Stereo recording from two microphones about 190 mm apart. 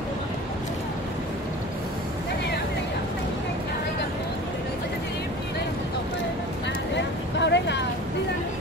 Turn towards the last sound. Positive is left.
turn(degrees=65)  # may be behind; listen again after turning